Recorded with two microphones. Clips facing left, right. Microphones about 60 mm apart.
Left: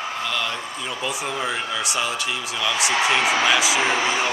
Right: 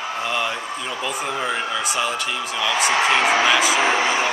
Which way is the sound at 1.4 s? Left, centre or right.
Centre.